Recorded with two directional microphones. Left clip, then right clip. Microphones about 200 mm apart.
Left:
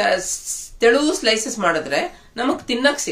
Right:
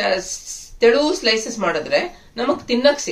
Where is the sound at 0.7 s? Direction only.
55° left (ahead or behind).